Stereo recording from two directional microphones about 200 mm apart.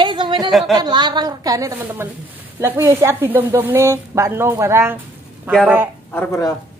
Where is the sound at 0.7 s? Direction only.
20° right (ahead or behind); by 5.9 s 5° right (ahead or behind).